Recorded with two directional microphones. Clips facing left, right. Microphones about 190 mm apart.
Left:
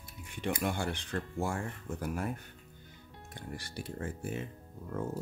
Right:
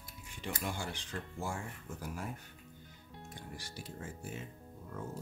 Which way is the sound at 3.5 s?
60° left (ahead or behind).